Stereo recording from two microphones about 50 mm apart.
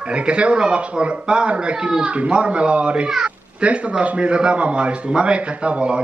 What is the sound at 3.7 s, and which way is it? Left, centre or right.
Speech, right.